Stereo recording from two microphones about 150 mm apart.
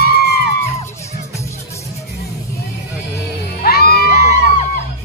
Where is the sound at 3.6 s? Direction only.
90° left.